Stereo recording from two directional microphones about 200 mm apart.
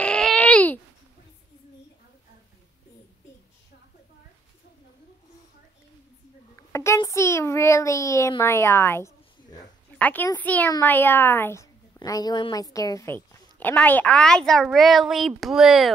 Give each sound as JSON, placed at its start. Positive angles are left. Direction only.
{"t": 0.0, "sound": "babbling", "side_deg": 5}
{"t": 6.7, "sound": "a sound", "side_deg": 15}
{"t": 9.9, "sound": "a woman's voice", "side_deg": 10}